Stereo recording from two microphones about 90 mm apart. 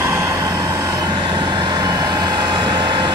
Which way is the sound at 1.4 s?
55° right (ahead or behind).